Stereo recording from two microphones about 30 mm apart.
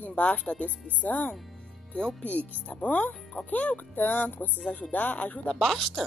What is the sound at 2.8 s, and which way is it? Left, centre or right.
Speech, left.